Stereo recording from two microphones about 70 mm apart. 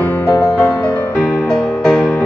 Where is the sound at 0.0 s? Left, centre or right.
Left.